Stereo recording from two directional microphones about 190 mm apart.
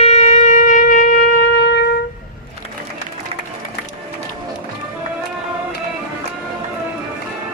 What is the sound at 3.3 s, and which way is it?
Run, 30° right (ahead or behind).